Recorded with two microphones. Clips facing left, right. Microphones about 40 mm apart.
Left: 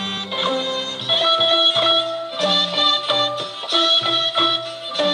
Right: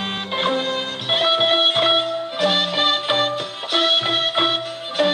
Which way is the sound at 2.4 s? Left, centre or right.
Centre.